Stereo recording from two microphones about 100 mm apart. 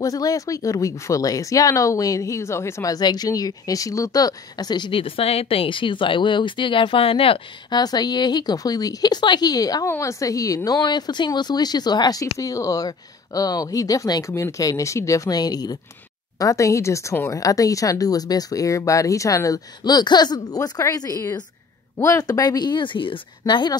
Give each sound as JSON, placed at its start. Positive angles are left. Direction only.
{"t": 0.0, "sound": "speech", "side_deg": 35}
{"t": 7.7, "sound": "speech", "side_deg": 45}